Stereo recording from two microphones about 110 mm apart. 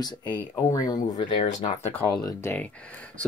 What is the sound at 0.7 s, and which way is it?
Speech, 35° left (ahead or behind).